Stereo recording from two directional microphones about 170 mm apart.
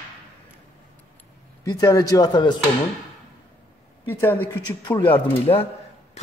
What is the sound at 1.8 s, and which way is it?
Speech, 20° left (ahead or behind).